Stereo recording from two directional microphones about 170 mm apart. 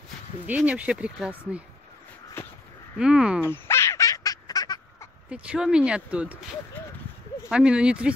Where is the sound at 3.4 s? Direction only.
15° left (ahead or behind).